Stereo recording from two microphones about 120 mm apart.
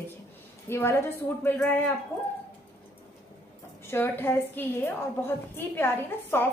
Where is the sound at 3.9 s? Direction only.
20° left (ahead or behind).